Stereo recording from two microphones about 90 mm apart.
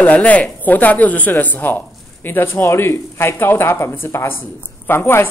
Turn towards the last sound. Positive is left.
turn(degrees=25)  # may be behind; listen again after turning